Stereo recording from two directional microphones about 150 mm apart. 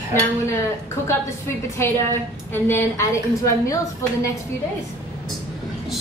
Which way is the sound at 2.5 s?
15° left (ahead or behind).